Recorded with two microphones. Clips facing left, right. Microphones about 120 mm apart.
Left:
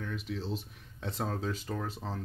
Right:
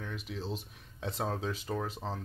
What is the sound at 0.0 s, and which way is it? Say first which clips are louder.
Speech: left 2 dB; 10° right (ahead or behind).